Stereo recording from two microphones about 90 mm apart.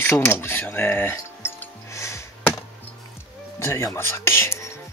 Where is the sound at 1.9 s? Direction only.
35° left (ahead or behind).